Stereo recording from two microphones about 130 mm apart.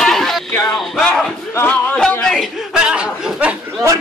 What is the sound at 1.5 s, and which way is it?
A man's voice, 15° left (ahead or behind).